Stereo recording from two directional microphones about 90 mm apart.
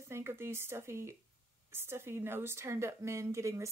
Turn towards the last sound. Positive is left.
turn(degrees=-35)  # may be behind; listen again after turning